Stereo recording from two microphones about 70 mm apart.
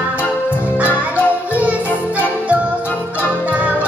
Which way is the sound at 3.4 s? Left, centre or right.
Right.